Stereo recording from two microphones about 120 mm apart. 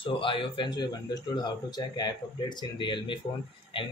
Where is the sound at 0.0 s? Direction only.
45° left (ahead or behind).